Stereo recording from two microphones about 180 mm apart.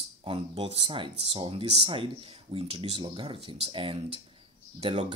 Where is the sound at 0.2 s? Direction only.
30° right (ahead or behind).